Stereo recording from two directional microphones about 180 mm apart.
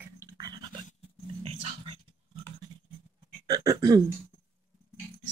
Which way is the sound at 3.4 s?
20° right (ahead or behind).